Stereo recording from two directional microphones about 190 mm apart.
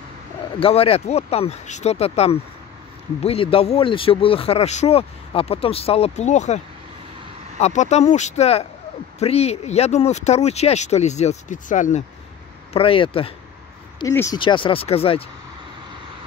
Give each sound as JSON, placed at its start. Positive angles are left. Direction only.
{"t": 0.6, "sound": "speech", "side_deg": 30}
{"t": 12.7, "sound": "speech", "side_deg": 30}
{"t": 13.9, "sound": "speech", "side_deg": 15}
{"t": 14.4, "sound": "speech", "side_deg": 25}